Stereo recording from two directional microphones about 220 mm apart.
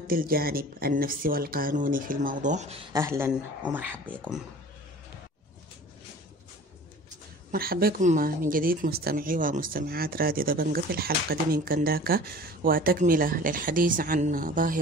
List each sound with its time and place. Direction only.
0.0 s speech: 40° right (ahead or behind)
2.9 s speech: 10° right (ahead or behind)
7.5 s speech: 45° right (ahead or behind)